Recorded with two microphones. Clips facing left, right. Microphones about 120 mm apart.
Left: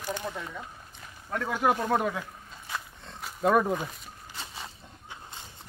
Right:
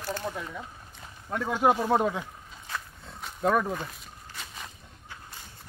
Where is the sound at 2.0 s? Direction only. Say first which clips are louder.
Right 2 dB; 20° right (ahead or behind).